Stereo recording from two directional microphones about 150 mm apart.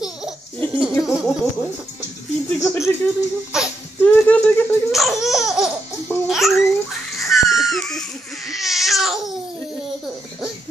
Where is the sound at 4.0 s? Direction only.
10° left (ahead or behind).